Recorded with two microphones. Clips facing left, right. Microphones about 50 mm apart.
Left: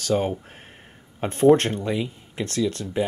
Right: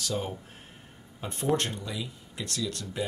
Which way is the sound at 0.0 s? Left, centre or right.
Left.